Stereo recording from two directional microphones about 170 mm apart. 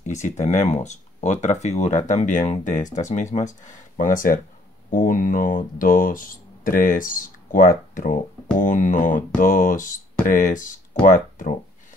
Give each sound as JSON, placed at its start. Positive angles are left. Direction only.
{"t": 0.0, "sound": "speech", "side_deg": 45}